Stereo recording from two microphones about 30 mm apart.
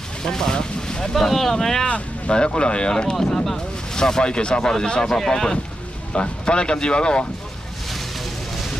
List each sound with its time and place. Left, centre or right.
0.2 s vehicle: centre
1.1 s speech: centre
1.9 s speech: left; by 5.6 s centre
6.1 s speech: left